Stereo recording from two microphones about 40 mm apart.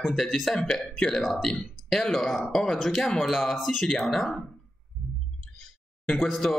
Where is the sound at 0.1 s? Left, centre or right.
Centre.